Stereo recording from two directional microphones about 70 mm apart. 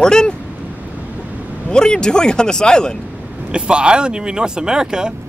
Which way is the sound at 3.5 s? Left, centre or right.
Centre.